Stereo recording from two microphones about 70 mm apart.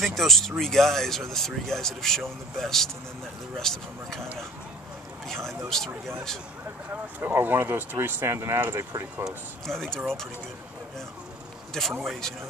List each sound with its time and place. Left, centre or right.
0.0 s speech: centre
5.7 s speech: centre
6.9 s speech: right
9.7 s speech: centre
12.0 s speech: centre